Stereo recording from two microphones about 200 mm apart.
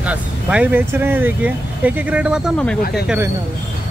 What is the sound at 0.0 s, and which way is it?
Speech, 5° right (ahead or behind).